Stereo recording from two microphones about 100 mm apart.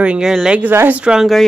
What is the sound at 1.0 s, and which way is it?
Speech, 10° right (ahead or behind).